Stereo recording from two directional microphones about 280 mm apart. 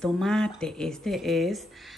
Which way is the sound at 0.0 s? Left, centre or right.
Centre.